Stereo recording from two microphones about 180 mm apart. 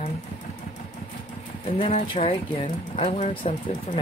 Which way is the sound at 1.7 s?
35° left (ahead or behind).